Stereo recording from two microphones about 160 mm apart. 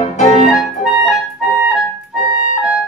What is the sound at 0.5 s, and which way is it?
Clarinet, centre (ahead or behind).